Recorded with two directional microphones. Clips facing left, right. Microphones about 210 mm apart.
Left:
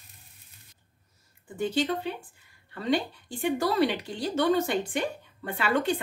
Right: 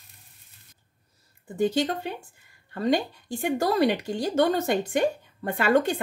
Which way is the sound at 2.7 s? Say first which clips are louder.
Right 3 dB; 45° right (ahead or behind).